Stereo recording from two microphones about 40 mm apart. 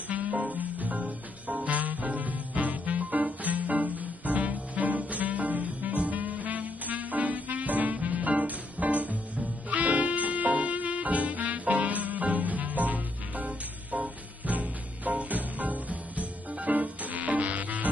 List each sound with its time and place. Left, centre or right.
0.3 s music: right